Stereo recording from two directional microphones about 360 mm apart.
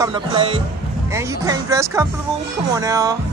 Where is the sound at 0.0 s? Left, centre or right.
Centre.